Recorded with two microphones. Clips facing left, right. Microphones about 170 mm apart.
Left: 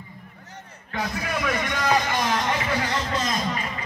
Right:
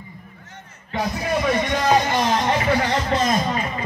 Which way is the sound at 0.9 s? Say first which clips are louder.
Right 5 dB; 30° right (ahead or behind).